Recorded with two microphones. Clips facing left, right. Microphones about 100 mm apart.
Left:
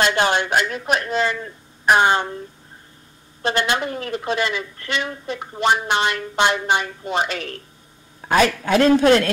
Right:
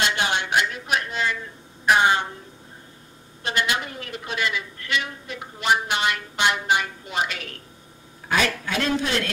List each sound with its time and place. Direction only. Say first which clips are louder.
0.0 s a woman's voice: left 6 dB; 40° left (ahead or behind)
3.4 s a woman's voice: left 5 dB; 35° left (ahead or behind)
8.3 s a man's voice: left 7 dB; 45° left (ahead or behind)